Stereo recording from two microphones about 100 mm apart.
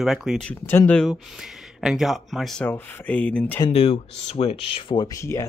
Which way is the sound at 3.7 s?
80° left.